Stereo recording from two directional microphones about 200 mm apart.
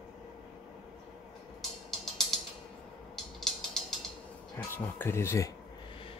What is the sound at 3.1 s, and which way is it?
Music, centre (ahead or behind).